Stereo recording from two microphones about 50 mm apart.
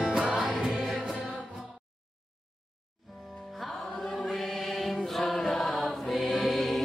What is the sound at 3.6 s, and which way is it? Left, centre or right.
Music, centre.